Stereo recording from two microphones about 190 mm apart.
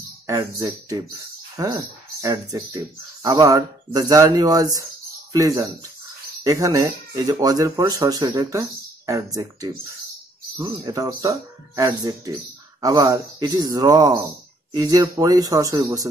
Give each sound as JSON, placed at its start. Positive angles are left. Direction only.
{"t": 0.3, "sound": "speech", "side_deg": -20}